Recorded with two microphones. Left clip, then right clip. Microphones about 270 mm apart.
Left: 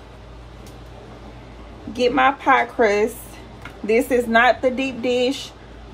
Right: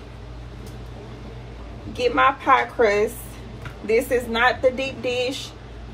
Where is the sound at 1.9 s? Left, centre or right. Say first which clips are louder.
Left 1 dB; left.